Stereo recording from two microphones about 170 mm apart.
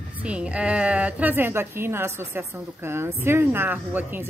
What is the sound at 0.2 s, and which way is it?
A woman's voice, 5° right (ahead or behind).